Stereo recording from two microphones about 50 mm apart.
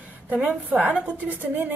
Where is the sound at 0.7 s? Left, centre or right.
Right.